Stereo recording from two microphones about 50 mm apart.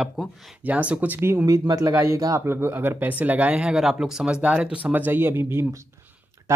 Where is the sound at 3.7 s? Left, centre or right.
Centre.